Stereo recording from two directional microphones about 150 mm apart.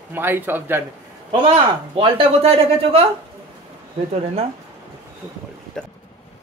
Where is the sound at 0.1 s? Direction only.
15° right (ahead or behind).